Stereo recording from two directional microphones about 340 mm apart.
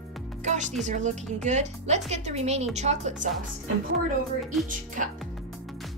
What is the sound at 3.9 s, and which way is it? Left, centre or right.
Speech, centre.